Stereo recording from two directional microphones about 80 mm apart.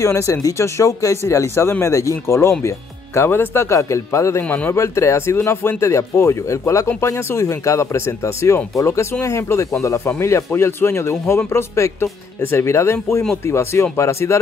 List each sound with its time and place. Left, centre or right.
0.0 s speech: left
4.4 s a man's voice: left
4.7 s speech: left